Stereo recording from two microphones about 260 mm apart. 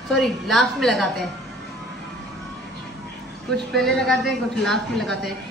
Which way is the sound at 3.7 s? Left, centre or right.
Centre.